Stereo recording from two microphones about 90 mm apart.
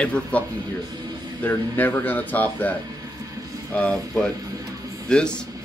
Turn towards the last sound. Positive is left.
turn(degrees=10)  # may be behind; listen again after turning